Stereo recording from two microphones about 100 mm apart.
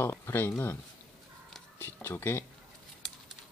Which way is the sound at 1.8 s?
25° left (ahead or behind).